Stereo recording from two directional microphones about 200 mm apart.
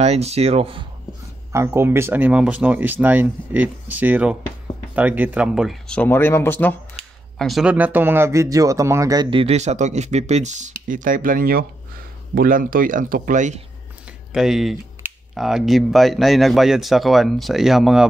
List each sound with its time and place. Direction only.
0.0 s speech: 30° right (ahead or behind)
1.5 s speech: 15° right (ahead or behind); by 13.6 s 40° right (ahead or behind)
14.3 s speech: centre (ahead or behind)